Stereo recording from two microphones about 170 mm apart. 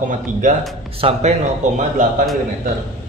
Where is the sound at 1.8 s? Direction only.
45° right (ahead or behind).